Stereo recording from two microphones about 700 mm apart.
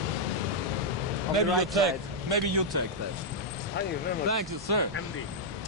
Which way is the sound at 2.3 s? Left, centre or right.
Right.